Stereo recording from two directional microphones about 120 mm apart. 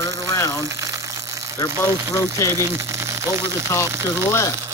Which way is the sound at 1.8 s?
25° left (ahead or behind).